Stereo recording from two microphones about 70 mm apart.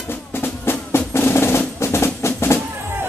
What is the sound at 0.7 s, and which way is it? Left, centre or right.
Percussion, left.